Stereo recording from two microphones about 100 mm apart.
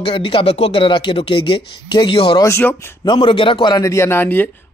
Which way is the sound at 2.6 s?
20° left (ahead or behind).